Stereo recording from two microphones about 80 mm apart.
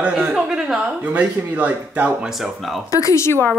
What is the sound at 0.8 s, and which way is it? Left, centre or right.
Speech, centre.